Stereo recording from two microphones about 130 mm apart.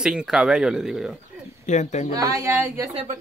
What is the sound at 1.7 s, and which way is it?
Speech, 65° left (ahead or behind).